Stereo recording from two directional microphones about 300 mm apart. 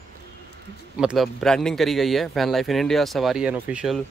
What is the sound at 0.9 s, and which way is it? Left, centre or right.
A man's voice, centre.